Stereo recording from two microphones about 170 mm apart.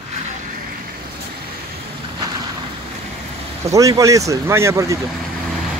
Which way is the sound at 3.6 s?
20° right (ahead or behind).